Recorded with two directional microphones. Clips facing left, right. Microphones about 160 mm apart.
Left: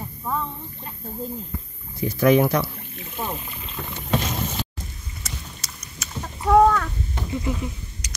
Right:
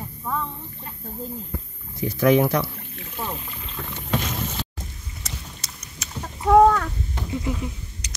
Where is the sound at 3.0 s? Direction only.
15° left (ahead or behind).